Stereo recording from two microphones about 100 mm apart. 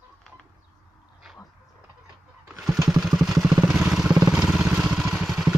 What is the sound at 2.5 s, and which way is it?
Motorcycle, 5° right (ahead or behind).